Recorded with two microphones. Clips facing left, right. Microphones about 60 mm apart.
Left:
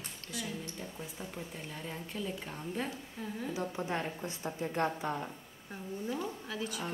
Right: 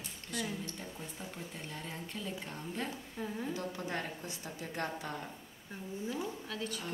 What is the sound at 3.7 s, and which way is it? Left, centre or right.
A woman's voice, left.